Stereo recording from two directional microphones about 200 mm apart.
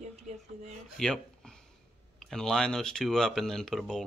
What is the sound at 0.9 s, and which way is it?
Speech, 5° left (ahead or behind).